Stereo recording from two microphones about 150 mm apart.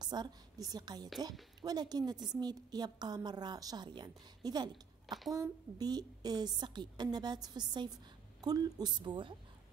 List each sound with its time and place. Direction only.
0.0 s a woman's voice: 30° right (ahead or behind)
5.0 s speech: centre (ahead or behind)
5.3 s a woman's voice: 25° right (ahead or behind)